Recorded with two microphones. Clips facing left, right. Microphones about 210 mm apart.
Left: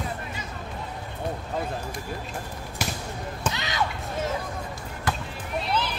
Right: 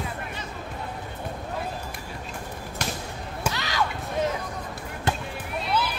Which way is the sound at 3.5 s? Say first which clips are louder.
Right 1 dB; 20° left (ahead or behind).